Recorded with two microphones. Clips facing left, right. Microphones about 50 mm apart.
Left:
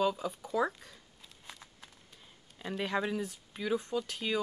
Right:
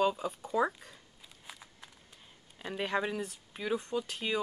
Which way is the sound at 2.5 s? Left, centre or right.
Centre.